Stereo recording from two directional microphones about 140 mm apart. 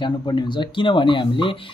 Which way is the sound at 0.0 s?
35° left (ahead or behind).